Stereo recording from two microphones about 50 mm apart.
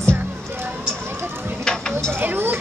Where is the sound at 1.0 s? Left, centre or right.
Right.